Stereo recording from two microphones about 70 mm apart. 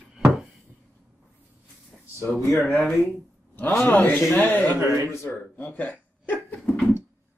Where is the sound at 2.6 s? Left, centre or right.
Left.